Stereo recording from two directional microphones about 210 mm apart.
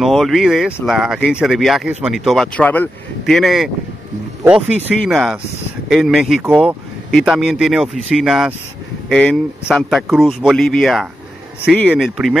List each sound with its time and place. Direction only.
0.0 s speech: centre (ahead or behind)
5.0 s speech: centre (ahead or behind)